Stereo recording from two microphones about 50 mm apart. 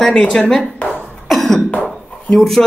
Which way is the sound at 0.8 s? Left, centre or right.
Centre.